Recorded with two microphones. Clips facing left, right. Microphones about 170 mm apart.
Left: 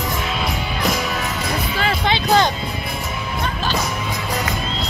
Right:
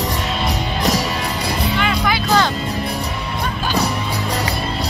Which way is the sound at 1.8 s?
35° left (ahead or behind).